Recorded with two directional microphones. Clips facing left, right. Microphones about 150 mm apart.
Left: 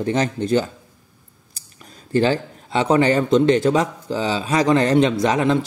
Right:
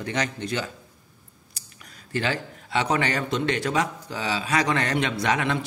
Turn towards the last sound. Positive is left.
turn(degrees=30)  # may be behind; listen again after turning